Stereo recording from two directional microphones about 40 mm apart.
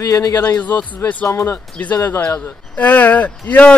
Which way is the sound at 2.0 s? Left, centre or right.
Left.